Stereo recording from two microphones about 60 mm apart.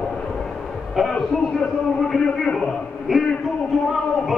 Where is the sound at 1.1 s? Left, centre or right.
Centre.